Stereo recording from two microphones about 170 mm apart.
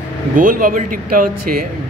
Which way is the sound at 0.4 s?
55° right (ahead or behind).